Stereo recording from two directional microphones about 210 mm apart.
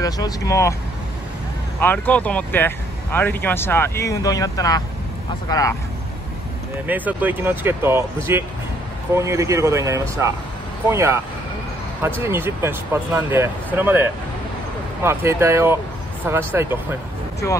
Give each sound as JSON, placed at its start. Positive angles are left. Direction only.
{"t": 0.0, "sound": "speech", "side_deg": 15}
{"t": 1.8, "sound": "speech", "side_deg": 10}
{"t": 6.9, "sound": "speech", "side_deg": -10}
{"t": 12.3, "sound": "speech", "side_deg": -10}
{"t": 15.0, "sound": "speech", "side_deg": -10}